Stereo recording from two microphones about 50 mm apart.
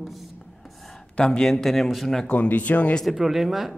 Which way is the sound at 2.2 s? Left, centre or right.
Left.